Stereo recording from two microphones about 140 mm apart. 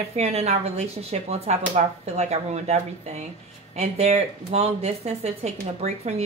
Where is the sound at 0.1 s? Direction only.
50° right (ahead or behind).